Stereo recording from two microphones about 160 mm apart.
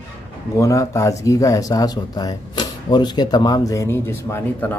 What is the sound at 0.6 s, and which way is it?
Speech, 20° left (ahead or behind).